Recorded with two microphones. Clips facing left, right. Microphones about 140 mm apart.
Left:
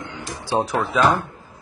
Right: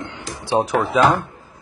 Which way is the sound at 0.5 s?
15° right (ahead or behind).